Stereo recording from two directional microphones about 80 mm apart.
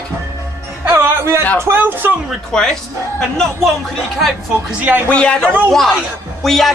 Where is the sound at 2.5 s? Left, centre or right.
Centre.